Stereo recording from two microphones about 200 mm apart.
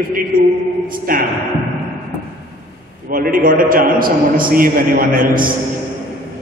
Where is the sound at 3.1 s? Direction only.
45° right (ahead or behind).